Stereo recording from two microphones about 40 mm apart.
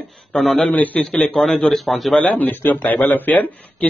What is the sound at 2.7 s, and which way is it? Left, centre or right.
Speech, left.